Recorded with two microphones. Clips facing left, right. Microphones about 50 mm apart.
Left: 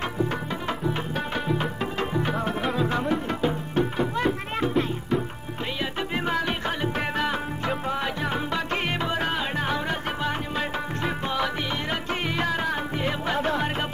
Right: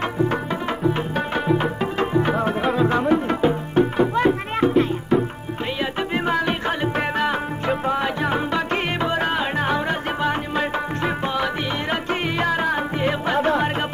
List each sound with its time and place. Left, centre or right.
0.8 s music: right
11.9 s music: right